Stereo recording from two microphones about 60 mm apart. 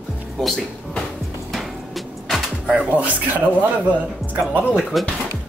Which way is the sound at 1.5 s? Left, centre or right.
Centre.